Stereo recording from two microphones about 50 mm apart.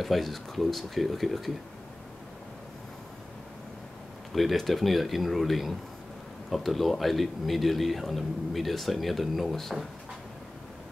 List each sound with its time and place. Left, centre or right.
0.0 s a man's voice: centre
4.3 s a man's voice: centre